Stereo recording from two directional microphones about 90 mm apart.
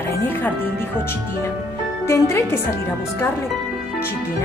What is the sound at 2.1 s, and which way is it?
Speech, 30° left (ahead or behind).